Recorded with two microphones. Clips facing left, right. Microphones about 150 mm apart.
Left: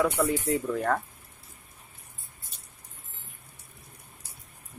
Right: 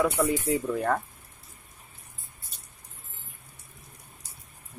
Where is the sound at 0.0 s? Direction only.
5° right (ahead or behind).